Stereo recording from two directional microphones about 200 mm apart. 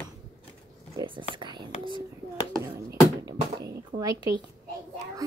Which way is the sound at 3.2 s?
20° right (ahead or behind).